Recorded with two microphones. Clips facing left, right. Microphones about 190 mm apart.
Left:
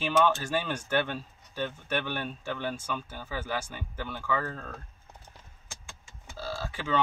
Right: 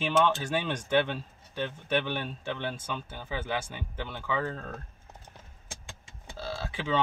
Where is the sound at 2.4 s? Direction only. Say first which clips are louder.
Left 2 dB; 20° right (ahead or behind).